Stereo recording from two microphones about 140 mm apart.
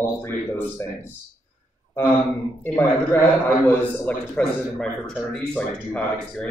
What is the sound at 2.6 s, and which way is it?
A man's voice, 15° left (ahead or behind).